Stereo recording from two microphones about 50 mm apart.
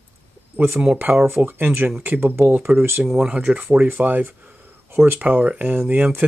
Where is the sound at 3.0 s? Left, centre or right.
Centre.